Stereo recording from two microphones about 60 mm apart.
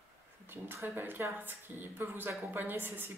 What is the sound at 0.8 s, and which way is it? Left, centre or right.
Speech, right.